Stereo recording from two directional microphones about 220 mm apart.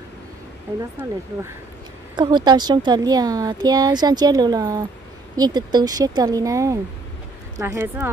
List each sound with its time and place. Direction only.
2.1 s speech: 20° right (ahead or behind)